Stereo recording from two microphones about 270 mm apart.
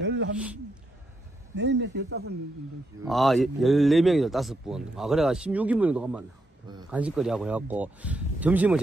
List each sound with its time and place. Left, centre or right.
0.0 s a sound: right
1.5 s speech: right
3.1 s speech: centre